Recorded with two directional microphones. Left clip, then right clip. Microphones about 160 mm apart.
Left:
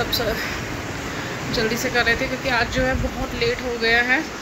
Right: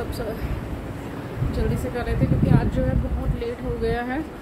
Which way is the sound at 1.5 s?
5° right (ahead or behind).